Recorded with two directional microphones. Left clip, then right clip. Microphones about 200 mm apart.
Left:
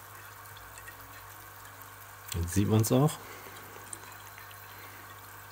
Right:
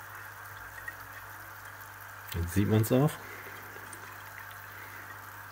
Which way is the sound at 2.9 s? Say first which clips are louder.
Even; 25° left (ahead or behind).